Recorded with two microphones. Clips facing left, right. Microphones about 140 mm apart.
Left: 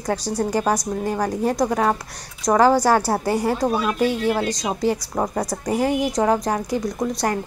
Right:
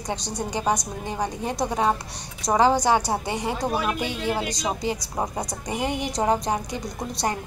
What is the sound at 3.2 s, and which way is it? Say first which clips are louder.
Speech: left 7 dB; 20° right (ahead or behind).